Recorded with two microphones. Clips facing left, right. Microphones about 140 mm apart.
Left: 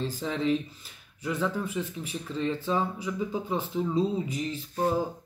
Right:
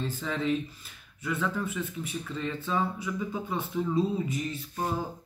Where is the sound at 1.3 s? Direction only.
10° left (ahead or behind).